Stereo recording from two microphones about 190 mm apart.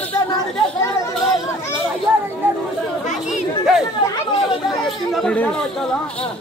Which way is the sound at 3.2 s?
Centre (ahead or behind).